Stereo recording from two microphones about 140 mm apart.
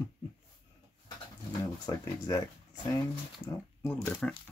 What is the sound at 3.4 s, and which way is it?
Speech, 10° left (ahead or behind).